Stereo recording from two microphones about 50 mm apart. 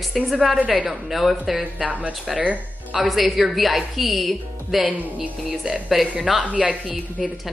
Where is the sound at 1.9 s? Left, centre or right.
Right.